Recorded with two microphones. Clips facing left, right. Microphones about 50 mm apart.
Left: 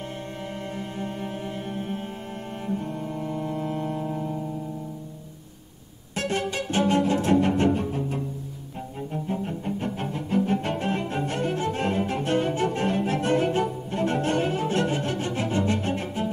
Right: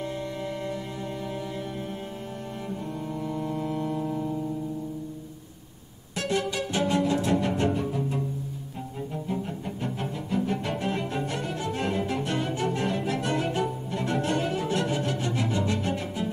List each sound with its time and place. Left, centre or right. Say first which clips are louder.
3.1 s music: right 1 dB; left
4.1 s keyboard: even; centre
6.1 s music: left 1 dB; left
9.1 s cello: left 3 dB; left
10.1 s cello: left 5 dB; left